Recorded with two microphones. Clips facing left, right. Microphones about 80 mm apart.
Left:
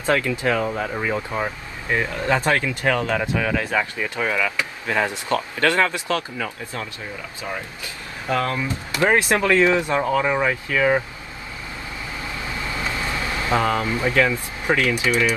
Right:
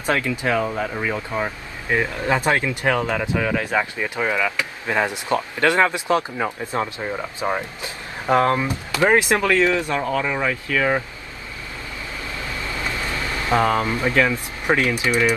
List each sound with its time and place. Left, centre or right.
0.0 s speech: right
0.7 s speech: centre
2.0 s speech: centre
6.8 s speech: right
7.8 s speech: right
9.5 s speech: centre
13.6 s speech: right
15.0 s speech: centre